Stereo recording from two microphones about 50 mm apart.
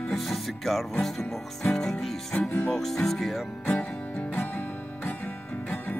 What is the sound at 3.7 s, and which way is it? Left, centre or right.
Music, left.